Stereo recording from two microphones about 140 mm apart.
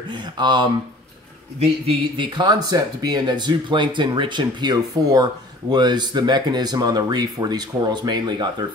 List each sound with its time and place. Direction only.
0.1 s speech: 35° right (ahead or behind)